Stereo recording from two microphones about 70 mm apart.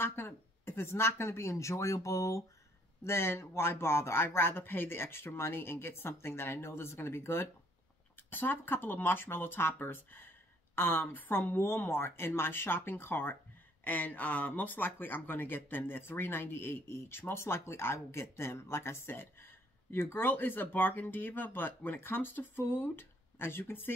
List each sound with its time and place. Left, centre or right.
0.0 s speech: left
3.0 s speech: left